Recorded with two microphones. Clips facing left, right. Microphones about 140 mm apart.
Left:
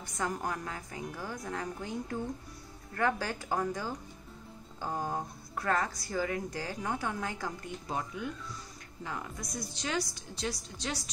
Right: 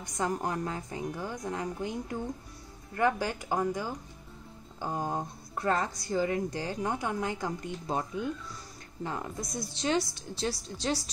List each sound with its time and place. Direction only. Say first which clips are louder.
0.0 s a woman's voice: right 3 dB; 20° right (ahead or behind)
9.0 s a woman's voice: right 4 dB; 30° right (ahead or behind)